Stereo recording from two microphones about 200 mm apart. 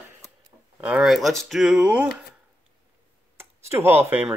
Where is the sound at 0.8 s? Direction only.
5° right (ahead or behind).